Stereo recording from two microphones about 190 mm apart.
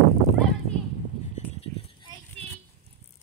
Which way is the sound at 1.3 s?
30° left (ahead or behind).